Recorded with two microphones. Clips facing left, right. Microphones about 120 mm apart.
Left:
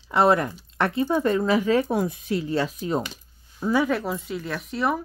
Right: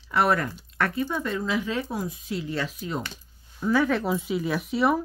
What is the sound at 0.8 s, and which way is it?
Speech, 25° left (ahead or behind).